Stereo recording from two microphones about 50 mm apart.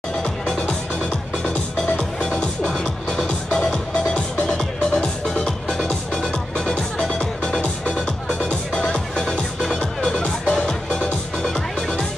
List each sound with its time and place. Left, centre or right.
0.2 s music: centre
2.0 s music: centre